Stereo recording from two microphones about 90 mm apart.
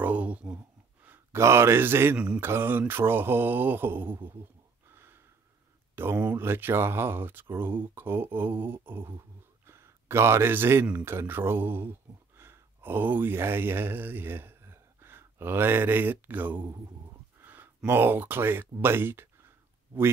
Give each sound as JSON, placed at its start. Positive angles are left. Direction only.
{"t": 0.0, "sound": "a sound", "side_deg": -15}
{"t": 1.4, "sound": "speech", "side_deg": -30}
{"t": 2.1, "sound": "mantra", "side_deg": -15}
{"t": 2.4, "sound": "speech", "side_deg": -25}
{"t": 4.8, "sound": "a sound", "side_deg": -25}
{"t": 5.9, "sound": "speech", "side_deg": -25}